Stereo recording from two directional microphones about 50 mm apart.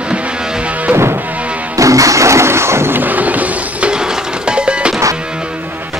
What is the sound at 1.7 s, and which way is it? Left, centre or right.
Music, right.